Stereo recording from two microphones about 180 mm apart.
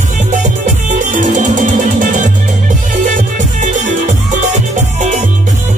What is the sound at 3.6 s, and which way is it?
Music, 45° right (ahead or behind).